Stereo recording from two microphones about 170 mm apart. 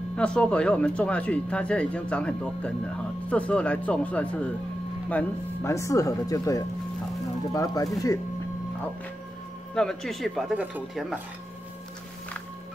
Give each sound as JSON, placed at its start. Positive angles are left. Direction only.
{"t": 0.1, "sound": "speech", "side_deg": 5}
{"t": 9.8, "sound": "speech", "side_deg": 5}